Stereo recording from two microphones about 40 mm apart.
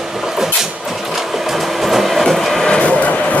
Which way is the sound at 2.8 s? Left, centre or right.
Left.